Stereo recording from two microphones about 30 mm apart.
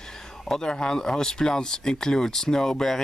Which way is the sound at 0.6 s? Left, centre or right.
Left.